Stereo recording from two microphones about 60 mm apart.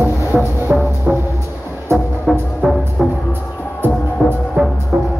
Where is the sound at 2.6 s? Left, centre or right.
Centre.